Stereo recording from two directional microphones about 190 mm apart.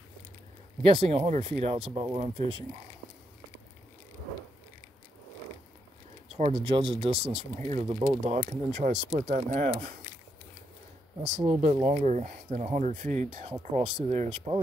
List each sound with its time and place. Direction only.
0.9 s speech: 30° right (ahead or behind)
6.3 s speech: 30° right (ahead or behind)
11.2 s speech: 35° right (ahead or behind)